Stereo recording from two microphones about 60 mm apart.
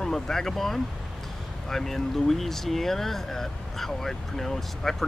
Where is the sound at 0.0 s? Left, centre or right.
Centre.